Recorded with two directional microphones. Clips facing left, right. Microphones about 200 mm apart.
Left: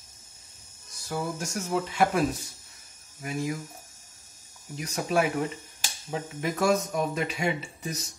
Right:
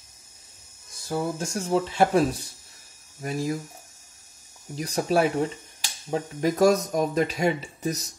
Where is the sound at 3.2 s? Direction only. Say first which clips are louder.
Right 3 dB; 35° right (ahead or behind).